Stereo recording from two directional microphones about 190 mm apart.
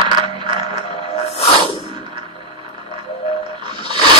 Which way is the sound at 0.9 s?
30° left (ahead or behind).